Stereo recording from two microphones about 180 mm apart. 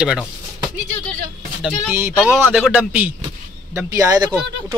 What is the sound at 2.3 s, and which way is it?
Speech, 5° right (ahead or behind).